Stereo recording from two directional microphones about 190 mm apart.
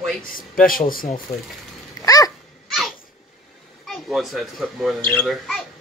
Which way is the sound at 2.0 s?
20° left (ahead or behind).